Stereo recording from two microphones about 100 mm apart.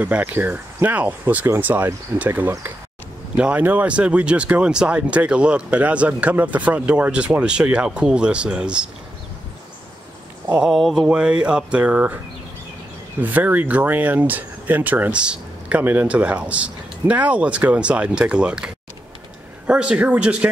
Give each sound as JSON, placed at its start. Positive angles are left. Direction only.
{"t": 0.0, "sound": "speech", "side_deg": -15}
{"t": 10.5, "sound": "speech", "side_deg": -5}
{"t": 13.2, "sound": "speech", "side_deg": -15}